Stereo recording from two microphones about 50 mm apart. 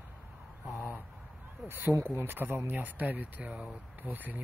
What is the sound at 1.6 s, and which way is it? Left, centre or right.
Speech, right.